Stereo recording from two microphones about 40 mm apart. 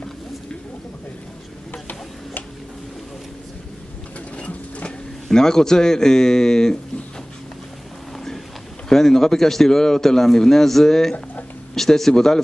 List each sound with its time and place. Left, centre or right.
1.7 s a sound: left
4.5 s printer: left
5.3 s a man's voice: centre
8.8 s a man's voice: centre